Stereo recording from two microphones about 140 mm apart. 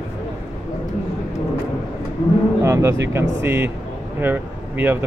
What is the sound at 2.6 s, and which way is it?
Speech, 20° right (ahead or behind).